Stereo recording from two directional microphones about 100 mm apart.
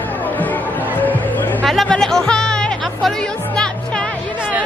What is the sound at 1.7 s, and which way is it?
Music, 5° left (ahead or behind).